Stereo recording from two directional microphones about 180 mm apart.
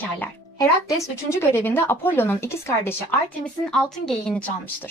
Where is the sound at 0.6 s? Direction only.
20° left (ahead or behind).